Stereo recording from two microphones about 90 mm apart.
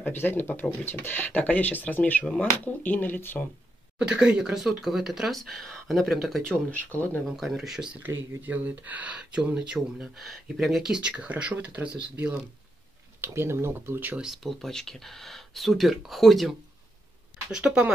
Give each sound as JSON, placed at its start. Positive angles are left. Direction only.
{"t": 0.0, "sound": "speech", "side_deg": 25}
{"t": 4.0, "sound": "speech", "side_deg": -10}
{"t": 7.2, "sound": "speech", "side_deg": 0}
{"t": 8.0, "sound": "speech", "side_deg": -20}
{"t": 10.1, "sound": "speech", "side_deg": 0}
{"t": 13.2, "sound": "speech", "side_deg": -30}
{"t": 14.2, "sound": "speech", "side_deg": 0}